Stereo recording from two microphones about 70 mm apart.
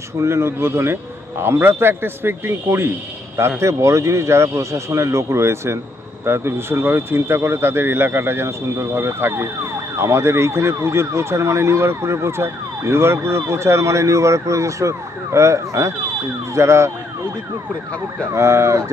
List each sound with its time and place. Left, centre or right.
0.2 s speech: right
18.3 s speech: right